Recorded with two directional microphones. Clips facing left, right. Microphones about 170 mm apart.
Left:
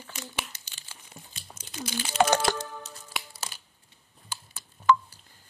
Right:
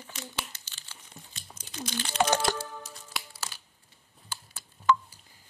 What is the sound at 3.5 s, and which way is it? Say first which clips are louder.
Crushing: left 1 dB; 20° left (ahead or behind).